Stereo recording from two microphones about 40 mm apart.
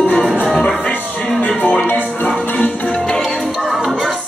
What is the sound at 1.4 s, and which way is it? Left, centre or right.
Music, left.